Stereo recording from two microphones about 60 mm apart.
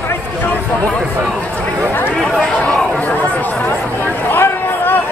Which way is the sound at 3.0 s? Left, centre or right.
Left.